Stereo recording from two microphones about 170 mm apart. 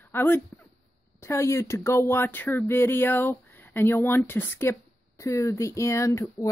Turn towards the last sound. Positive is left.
turn(degrees=20)  # may be behind; listen again after turning